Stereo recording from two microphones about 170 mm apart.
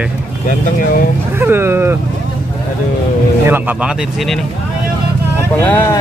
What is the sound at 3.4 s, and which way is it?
Speech, 10° right (ahead or behind).